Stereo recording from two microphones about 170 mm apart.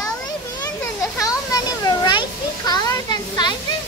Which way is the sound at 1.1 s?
20° left (ahead or behind).